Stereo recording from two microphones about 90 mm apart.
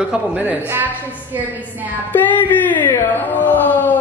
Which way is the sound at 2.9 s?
20° left (ahead or behind).